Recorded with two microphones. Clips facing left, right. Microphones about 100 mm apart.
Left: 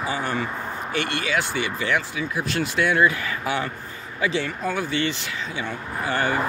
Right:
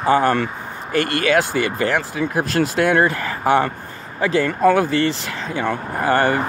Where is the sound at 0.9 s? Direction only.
45° right (ahead or behind).